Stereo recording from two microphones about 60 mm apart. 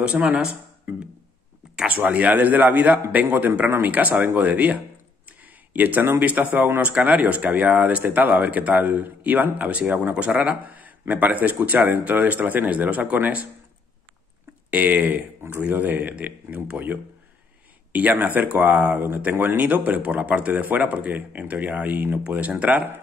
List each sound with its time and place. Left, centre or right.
0.0 s speech: right
1.9 s a man's voice: right
14.7 s speech: right
17.9 s speech: right
18.9 s speech: right